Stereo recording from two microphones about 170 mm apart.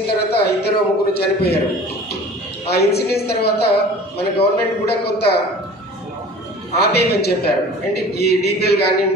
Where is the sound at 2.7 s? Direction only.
70° left (ahead or behind).